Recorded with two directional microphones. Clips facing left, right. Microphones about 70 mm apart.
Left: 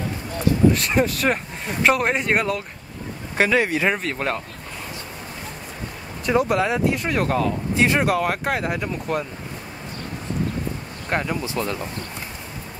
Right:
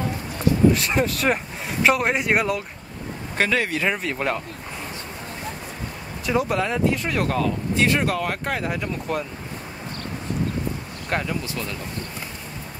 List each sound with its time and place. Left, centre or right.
0.7 s speech: centre
3.3 s speech: centre
4.0 s speech: centre
6.2 s speech: centre
11.1 s speech: centre